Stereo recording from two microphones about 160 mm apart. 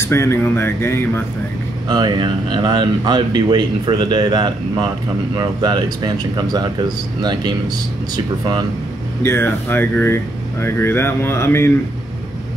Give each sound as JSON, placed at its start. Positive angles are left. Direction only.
{"t": 0.0, "sound": "speech", "side_deg": 15}
{"t": 1.9, "sound": "speech", "side_deg": -25}
{"t": 9.2, "sound": "speech", "side_deg": 15}